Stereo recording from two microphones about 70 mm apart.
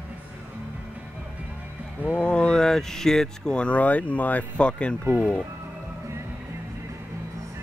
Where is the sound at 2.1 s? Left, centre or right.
Centre.